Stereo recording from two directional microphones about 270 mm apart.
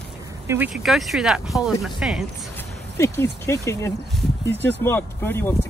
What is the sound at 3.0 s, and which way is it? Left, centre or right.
Speech, centre.